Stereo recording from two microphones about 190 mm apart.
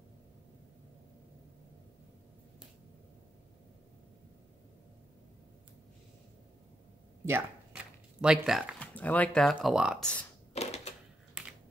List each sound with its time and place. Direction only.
7.2 s speech: 10° right (ahead or behind)
10.5 s typewriter: 35° left (ahead or behind)